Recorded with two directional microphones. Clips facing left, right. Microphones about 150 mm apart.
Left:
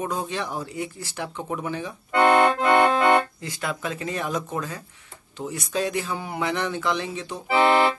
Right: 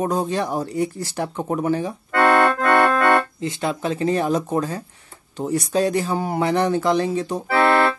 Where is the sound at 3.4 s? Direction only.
30° right (ahead or behind).